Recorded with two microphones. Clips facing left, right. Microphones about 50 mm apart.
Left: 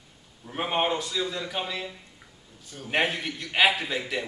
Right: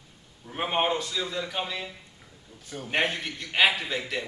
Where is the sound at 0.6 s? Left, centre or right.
Centre.